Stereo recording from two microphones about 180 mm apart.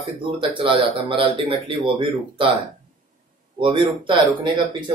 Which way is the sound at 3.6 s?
25° right (ahead or behind).